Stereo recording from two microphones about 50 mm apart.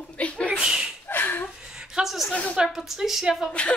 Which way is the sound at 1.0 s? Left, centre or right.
Left.